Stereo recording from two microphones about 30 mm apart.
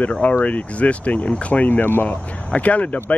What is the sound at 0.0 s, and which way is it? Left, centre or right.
Speech, left.